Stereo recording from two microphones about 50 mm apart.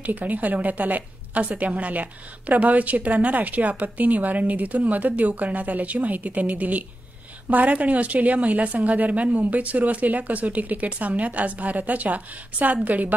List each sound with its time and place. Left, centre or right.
0.0 s a woman's voice: right